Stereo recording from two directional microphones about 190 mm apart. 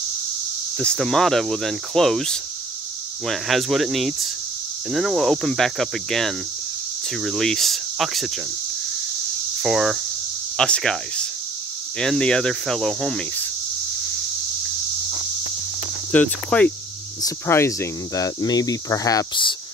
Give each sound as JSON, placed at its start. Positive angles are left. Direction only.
{"t": 0.7, "sound": "speech", "side_deg": 5}
{"t": 9.6, "sound": "speech", "side_deg": 0}
{"t": 16.1, "sound": "cricket", "side_deg": 5}
{"t": 17.2, "sound": "speech", "side_deg": 15}